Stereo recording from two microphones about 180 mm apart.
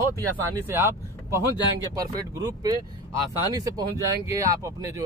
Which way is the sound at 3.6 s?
20° right (ahead or behind).